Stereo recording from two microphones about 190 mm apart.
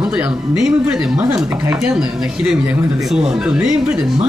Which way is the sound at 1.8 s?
5° right (ahead or behind).